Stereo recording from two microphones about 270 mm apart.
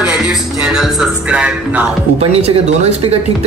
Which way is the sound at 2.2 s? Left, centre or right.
Right.